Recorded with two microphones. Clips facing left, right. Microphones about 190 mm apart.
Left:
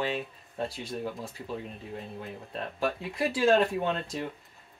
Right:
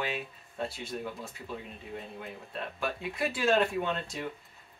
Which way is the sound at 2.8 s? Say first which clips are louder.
Left 3 dB; 35° left (ahead or behind).